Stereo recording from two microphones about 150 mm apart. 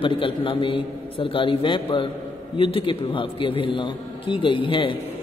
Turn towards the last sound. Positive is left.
turn(degrees=35)  # may be behind; listen again after turning